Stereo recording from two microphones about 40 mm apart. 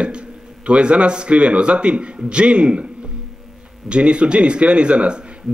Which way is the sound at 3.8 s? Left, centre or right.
Right.